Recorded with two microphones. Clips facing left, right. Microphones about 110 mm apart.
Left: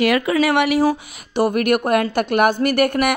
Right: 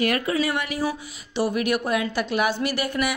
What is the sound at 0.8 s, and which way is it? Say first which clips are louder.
Speech: left 8 dB; 50° left (ahead or behind).